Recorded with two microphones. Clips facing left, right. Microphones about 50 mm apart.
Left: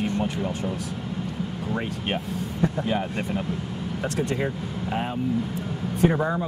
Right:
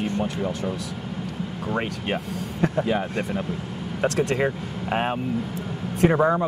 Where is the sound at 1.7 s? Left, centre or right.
Right.